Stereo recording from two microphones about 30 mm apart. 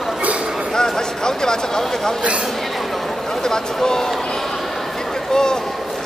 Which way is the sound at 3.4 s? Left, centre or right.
Left.